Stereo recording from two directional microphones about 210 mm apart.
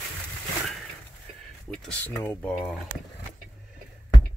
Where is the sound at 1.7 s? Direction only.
Centre (ahead or behind).